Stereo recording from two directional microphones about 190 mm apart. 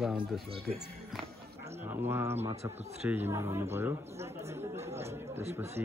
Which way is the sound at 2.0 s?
15° right (ahead or behind).